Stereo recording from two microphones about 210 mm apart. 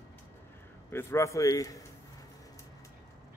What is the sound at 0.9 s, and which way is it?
Speech, 15° left (ahead or behind).